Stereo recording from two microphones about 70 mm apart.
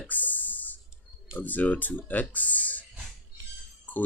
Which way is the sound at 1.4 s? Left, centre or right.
Left.